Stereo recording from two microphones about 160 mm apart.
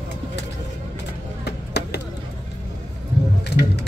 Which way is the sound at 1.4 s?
90° left.